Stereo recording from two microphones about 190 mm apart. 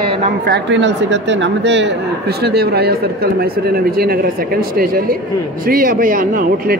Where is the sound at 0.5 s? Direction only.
70° right (ahead or behind).